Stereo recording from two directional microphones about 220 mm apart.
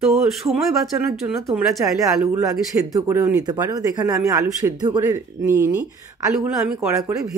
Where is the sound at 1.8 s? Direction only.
15° right (ahead or behind).